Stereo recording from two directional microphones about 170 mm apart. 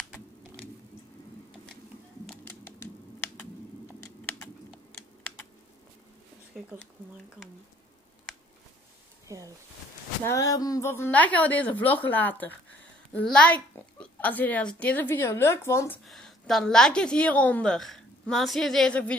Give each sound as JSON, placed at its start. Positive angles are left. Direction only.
{"t": 2.4, "sound": "typewriter", "side_deg": 15}
{"t": 3.3, "sound": "typing", "side_deg": 15}
{"t": 6.5, "sound": "speech", "side_deg": 0}
{"t": 9.3, "sound": "speech", "side_deg": -15}
{"t": 10.2, "sound": "a child's voice", "side_deg": 20}
{"t": 16.1, "sound": "a woman's voice", "side_deg": 0}